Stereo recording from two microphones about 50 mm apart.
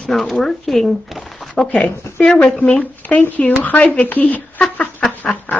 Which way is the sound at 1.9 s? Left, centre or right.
Left.